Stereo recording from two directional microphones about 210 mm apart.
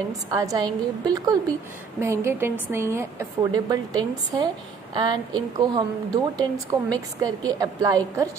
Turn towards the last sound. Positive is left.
turn(degrees=-15)  # may be behind; listen again after turning